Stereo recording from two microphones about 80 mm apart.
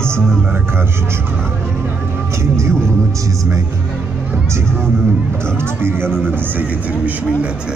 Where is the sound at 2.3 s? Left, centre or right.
Right.